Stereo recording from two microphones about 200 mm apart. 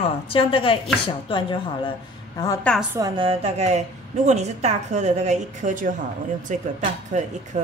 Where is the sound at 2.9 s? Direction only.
20° right (ahead or behind).